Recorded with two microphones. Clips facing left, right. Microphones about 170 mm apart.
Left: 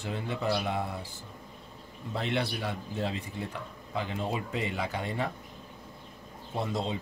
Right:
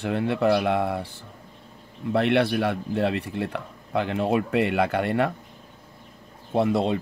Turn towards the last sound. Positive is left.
turn(degrees=-65)  # may be behind; listen again after turning